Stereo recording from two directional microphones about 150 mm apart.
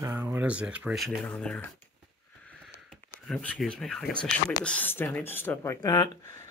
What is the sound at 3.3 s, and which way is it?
Speech, 5° left (ahead or behind).